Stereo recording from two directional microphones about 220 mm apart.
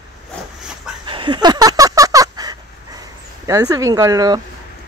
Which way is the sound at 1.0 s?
20° right (ahead or behind).